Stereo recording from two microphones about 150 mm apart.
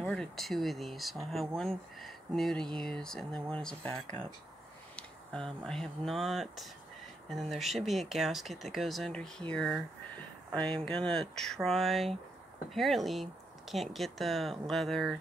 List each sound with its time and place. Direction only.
0.0 s speech: 5° left (ahead or behind)